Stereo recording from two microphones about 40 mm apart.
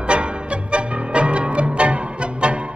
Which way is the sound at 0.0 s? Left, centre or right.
Right.